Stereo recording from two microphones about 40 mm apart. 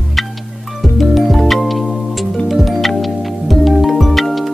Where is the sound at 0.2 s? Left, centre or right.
Centre.